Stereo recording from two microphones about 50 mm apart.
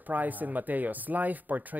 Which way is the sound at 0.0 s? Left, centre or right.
Right.